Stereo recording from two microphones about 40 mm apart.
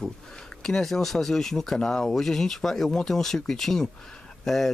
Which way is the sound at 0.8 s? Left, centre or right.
Centre.